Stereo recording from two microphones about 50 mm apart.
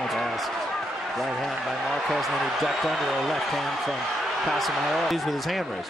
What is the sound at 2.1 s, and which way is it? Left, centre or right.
Speech, centre.